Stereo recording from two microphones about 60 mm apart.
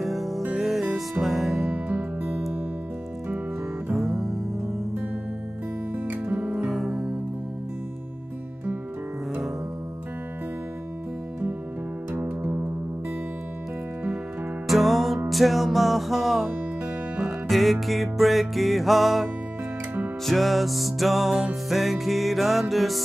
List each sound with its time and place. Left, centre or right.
0.0 s music: centre
1.7 s music: right
3.9 s music: centre
6.0 s music: right
6.4 s music: centre
6.7 s music: centre
14.7 s music: centre
20.2 s music: centre